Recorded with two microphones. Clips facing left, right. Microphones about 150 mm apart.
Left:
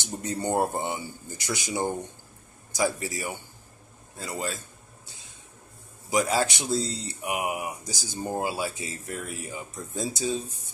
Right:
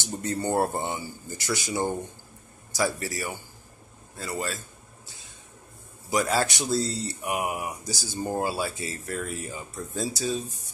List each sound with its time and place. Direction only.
0.0 s speech: 15° left (ahead or behind)
6.0 s speech: 15° left (ahead or behind)